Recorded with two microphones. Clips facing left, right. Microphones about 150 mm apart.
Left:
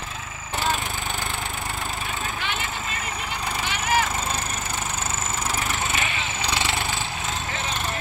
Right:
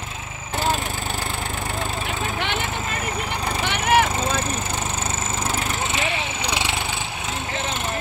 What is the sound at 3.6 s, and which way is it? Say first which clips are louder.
Wood: right 5 dB; 60° right (ahead or behind).